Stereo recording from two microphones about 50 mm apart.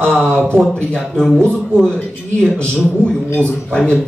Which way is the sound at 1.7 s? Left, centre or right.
Centre.